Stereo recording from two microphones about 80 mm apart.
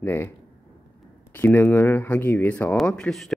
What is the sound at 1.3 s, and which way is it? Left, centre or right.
A man's voice, left.